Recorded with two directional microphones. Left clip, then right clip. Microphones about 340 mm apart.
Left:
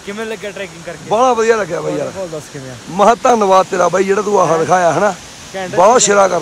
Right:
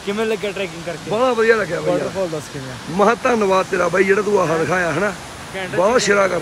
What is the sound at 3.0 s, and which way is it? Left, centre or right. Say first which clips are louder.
Speech: left 6 dB; centre.